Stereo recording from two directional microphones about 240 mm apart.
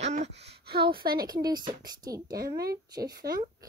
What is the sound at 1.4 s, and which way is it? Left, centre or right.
Speech, centre.